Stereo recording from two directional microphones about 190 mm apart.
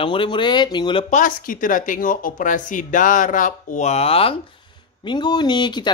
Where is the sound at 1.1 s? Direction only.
45° left (ahead or behind).